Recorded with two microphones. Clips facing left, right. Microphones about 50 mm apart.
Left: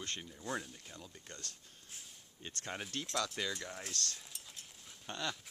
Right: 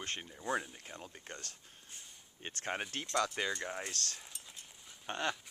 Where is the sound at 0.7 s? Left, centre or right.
Right.